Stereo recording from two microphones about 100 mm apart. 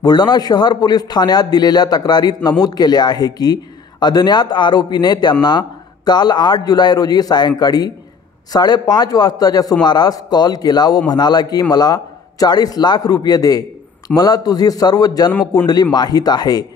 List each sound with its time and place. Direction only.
0.0 s a man's voice: 45° left (ahead or behind)